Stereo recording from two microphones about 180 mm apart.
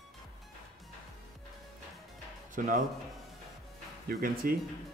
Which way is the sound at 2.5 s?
45° right (ahead or behind).